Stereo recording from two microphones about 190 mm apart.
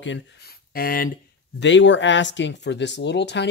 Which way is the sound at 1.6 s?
70° left (ahead or behind).